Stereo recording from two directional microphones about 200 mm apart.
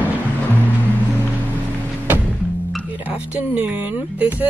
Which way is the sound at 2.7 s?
5° right (ahead or behind).